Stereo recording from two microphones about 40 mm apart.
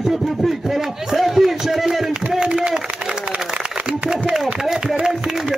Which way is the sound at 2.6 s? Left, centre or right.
Centre.